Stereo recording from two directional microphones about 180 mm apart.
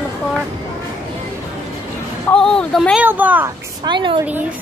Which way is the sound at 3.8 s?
25° right (ahead or behind).